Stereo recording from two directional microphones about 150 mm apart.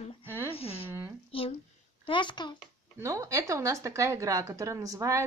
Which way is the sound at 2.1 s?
30° left (ahead or behind).